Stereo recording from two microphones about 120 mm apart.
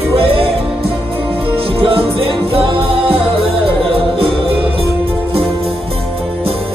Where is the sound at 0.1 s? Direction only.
50° right (ahead or behind).